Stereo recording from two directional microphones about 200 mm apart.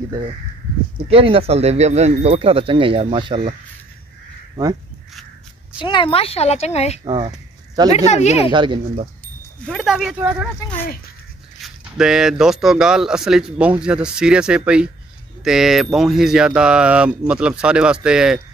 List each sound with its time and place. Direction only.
1.0 s speech: 30° right (ahead or behind)
5.8 s speech: 25° left (ahead or behind)
7.1 s a sound: 25° right (ahead or behind)
7.9 s speech: 35° left (ahead or behind)
8.5 s speech: 25° right (ahead or behind)
9.7 s speech: centre (ahead or behind)
11.6 s speech: 5° right (ahead or behind)